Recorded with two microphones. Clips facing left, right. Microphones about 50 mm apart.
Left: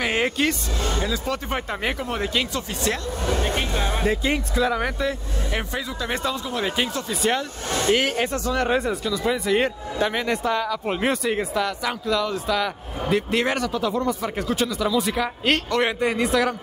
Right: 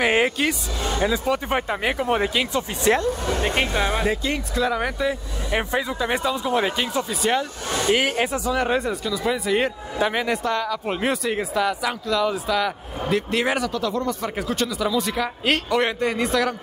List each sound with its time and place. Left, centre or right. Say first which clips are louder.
0.0 s speech: right 2 dB; centre
2.0 s speech: right 3 dB; right
4.6 s speech: right 2 dB; centre
5.5 s speech: right 6 dB; centre
7.1 s speech: right 1 dB; centre
10.4 s speech: even; centre
13.7 s speech: left 1 dB; centre